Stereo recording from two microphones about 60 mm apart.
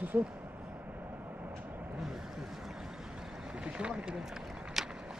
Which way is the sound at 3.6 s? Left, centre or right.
Centre.